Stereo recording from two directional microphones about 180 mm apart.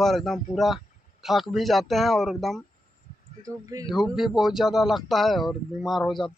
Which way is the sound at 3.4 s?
20° right (ahead or behind).